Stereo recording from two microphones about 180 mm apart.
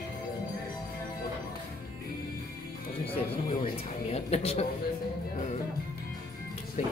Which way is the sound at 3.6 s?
35° left (ahead or behind).